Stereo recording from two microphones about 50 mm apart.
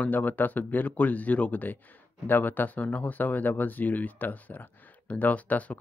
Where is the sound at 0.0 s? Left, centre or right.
Left.